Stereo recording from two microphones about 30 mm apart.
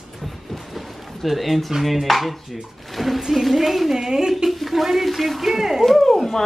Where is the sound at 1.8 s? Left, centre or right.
Centre.